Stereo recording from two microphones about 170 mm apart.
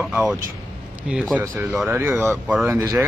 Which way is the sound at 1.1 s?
Centre (ahead or behind).